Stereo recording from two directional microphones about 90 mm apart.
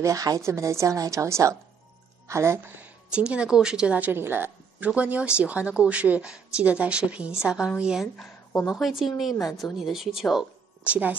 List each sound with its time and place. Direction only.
0.0 s a woman's voice: 40° right (ahead or behind)
2.8 s a woman's voice: 15° right (ahead or behind)
10.9 s a woman's voice: 15° right (ahead or behind)